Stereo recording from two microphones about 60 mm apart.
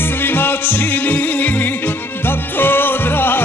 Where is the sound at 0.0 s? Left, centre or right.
Left.